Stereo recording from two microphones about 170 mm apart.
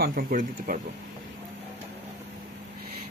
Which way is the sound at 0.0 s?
55° right (ahead or behind).